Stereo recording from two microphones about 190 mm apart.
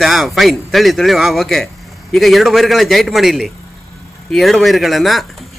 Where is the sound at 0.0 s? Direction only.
Centre (ahead or behind).